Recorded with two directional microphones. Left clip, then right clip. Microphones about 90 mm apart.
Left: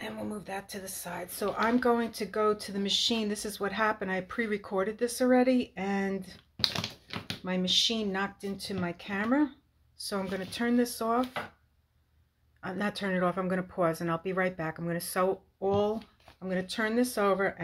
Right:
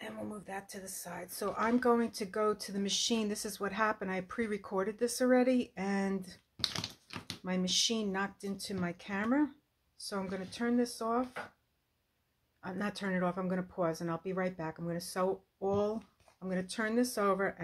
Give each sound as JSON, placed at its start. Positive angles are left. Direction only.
{"t": 0.0, "sound": "speech", "side_deg": -15}
{"t": 6.5, "sound": "typing", "side_deg": -75}
{"t": 7.4, "sound": "speech", "side_deg": -25}
{"t": 9.9, "sound": "speech", "side_deg": -5}
{"t": 12.6, "sound": "speech", "side_deg": -20}